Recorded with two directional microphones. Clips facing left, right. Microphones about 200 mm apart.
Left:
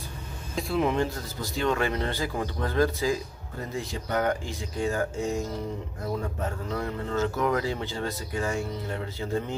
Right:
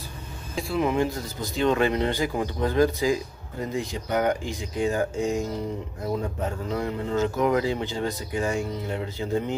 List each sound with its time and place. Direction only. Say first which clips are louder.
0.6 s speech: right 1 dB; centre (ahead or behind)
1.0 s speech: right 3 dB; 20° right (ahead or behind)
6.7 s speech: right 4 dB; 15° right (ahead or behind)